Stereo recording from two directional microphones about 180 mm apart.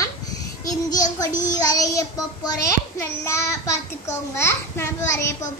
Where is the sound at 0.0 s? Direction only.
20° left (ahead or behind).